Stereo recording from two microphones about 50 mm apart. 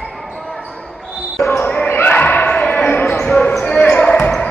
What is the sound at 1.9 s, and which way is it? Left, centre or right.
Basketball bounce, left.